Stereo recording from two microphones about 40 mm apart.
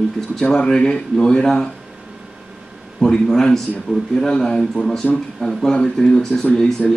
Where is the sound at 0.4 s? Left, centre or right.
Centre.